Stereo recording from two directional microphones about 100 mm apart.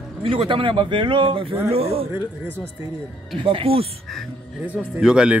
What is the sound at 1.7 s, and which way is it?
Speech, 85° right.